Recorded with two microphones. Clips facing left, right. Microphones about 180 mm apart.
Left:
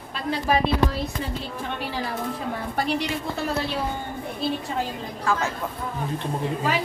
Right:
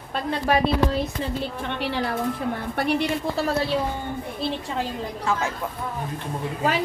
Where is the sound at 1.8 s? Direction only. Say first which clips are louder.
Right 6 dB; 65° right (ahead or behind).